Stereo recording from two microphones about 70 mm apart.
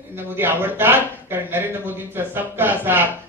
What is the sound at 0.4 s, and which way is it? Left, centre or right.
A man's voice, right.